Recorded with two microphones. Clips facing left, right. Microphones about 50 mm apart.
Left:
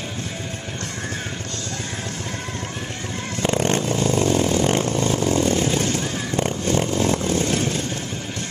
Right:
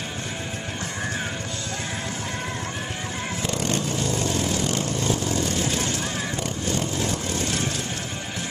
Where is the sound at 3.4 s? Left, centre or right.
Left.